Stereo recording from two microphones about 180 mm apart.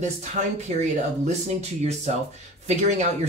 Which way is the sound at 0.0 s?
40° right (ahead or behind).